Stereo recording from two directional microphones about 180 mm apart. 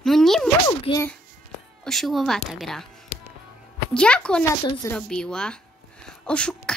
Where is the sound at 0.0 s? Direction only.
Centre (ahead or behind).